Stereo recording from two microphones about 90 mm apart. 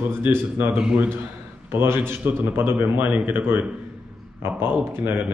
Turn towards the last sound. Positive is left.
turn(degrees=-25)  # may be behind; listen again after turning